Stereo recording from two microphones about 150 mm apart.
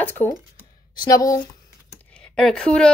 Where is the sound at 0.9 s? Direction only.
25° left (ahead or behind).